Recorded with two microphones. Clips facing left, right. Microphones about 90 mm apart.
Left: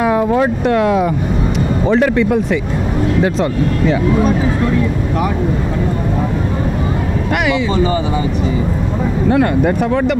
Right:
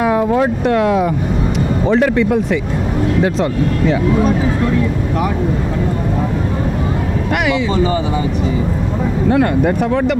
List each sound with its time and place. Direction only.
0.0 s speech: 30° left (ahead or behind)
7.3 s speech: 25° left (ahead or behind)
9.3 s speech: 30° left (ahead or behind)